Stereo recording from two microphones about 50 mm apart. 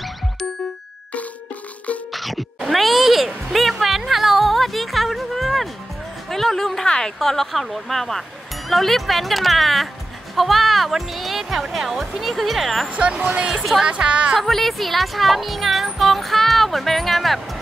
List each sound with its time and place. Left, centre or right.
2.1 s a sound: centre
3.8 s music: centre
6.2 s speech: centre
12.9 s speech: right
14.4 s speech: centre